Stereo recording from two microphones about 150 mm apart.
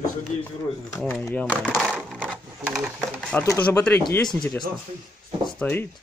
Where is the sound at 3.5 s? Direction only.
15° left (ahead or behind).